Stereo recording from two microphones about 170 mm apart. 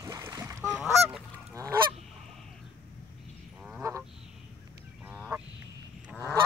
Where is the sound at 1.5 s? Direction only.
20° right (ahead or behind).